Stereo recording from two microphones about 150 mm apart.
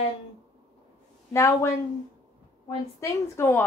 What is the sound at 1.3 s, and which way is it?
Speech, 20° left (ahead or behind).